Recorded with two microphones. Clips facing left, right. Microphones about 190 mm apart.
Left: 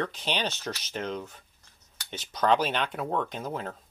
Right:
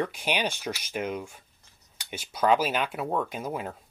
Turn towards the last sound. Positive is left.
turn(degrees=-10)  # may be behind; listen again after turning